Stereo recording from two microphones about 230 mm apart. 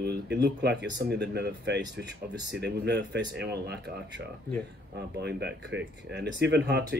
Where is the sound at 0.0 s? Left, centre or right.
Right.